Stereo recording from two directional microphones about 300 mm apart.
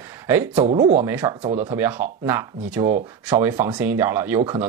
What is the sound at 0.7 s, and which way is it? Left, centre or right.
Speech, centre.